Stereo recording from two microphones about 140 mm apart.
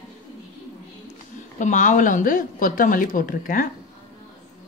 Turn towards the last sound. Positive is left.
turn(degrees=80)